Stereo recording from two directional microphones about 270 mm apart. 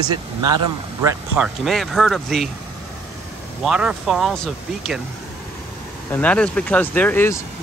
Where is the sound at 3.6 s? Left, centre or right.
Centre.